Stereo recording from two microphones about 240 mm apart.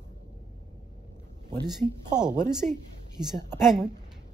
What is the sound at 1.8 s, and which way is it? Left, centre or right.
Speech, centre.